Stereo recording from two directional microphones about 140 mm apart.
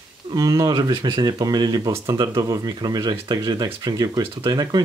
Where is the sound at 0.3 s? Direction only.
25° right (ahead or behind).